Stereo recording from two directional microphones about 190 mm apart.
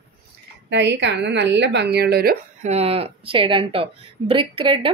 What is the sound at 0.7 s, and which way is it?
A woman's voice, 65° right (ahead or behind).